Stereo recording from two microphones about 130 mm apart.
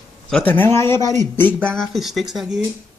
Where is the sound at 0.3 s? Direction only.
15° left (ahead or behind); by 2.6 s 5° right (ahead or behind).